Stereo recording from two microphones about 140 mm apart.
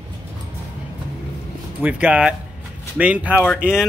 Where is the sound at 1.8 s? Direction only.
10° right (ahead or behind).